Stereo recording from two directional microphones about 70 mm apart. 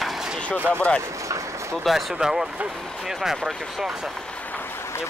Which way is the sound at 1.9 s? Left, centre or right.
Centre.